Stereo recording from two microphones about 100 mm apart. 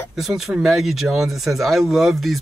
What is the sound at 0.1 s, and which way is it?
Speech, 5° right (ahead or behind).